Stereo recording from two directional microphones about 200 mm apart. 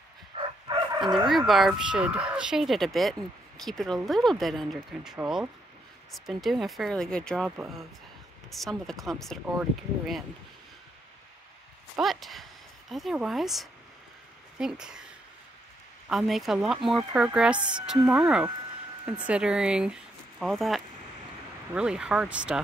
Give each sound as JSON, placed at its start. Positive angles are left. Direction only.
{"t": 0.3, "sound": "a sound", "side_deg": -30}
{"t": 1.1, "sound": "speech", "side_deg": 0}
{"t": 12.0, "sound": "speech", "side_deg": 0}